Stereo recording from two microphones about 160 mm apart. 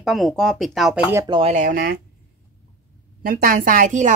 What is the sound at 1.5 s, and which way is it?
Speech, 55° right (ahead or behind).